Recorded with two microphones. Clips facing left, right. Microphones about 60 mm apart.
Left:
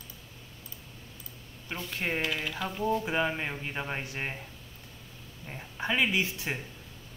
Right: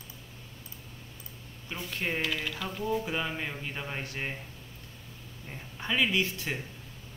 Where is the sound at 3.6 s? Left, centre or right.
Centre.